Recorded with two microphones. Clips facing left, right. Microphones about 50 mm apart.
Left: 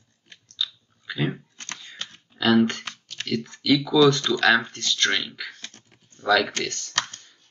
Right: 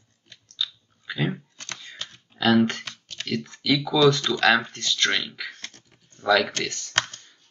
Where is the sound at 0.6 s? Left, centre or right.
Centre.